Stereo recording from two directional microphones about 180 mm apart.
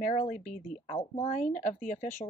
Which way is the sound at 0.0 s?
45° left (ahead or behind).